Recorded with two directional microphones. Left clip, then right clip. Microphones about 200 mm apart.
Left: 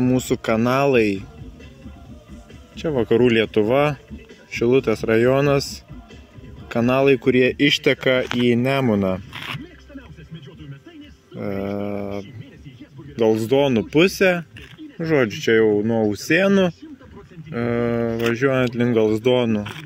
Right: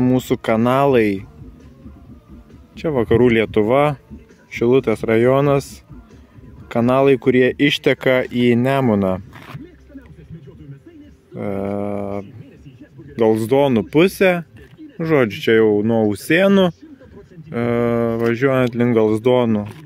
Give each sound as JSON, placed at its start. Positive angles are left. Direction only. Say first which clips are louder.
{"t": 0.0, "sound": "speech", "louder": "right 3 dB", "side_deg": -10}
{"t": 2.8, "sound": "speech", "louder": "right 2 dB", "side_deg": -20}
{"t": 11.3, "sound": "a sound", "louder": "right 3 dB", "side_deg": -10}
{"t": 13.1, "sound": "speech", "louder": "right 2 dB", "side_deg": -15}